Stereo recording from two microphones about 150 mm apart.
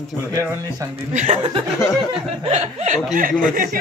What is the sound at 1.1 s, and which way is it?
Speech, 55° right (ahead or behind).